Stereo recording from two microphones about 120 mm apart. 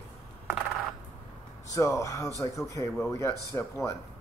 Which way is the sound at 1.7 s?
25° left (ahead or behind).